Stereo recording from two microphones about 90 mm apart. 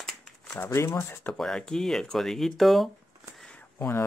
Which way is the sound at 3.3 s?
5° left (ahead or behind).